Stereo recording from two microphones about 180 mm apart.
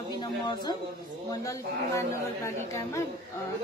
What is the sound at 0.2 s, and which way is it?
A woman's voice, 20° left (ahead or behind).